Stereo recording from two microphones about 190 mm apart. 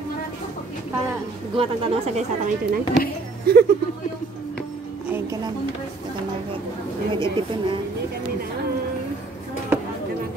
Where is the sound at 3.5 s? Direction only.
55° right (ahead or behind).